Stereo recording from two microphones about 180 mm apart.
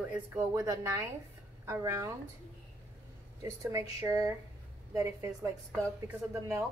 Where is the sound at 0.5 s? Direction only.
15° right (ahead or behind).